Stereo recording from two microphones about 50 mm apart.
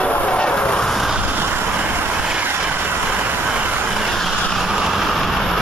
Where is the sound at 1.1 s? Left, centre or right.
Right.